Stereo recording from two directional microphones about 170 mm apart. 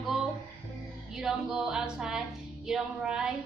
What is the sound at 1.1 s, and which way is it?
Music, centre (ahead or behind).